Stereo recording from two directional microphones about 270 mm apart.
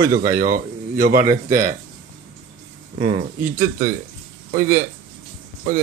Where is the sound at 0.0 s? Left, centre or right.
Right.